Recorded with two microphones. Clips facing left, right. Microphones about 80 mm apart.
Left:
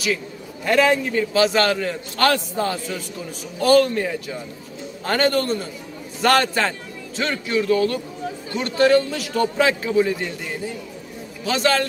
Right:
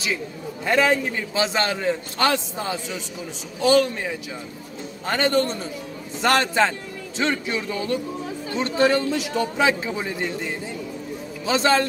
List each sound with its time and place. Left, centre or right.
0.7 s a man's voice: right
11.4 s a man's voice: right